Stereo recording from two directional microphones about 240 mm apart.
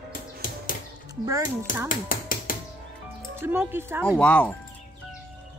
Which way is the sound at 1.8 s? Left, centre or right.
Left.